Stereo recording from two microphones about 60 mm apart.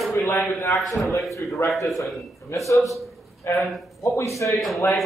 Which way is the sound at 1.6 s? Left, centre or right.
Left.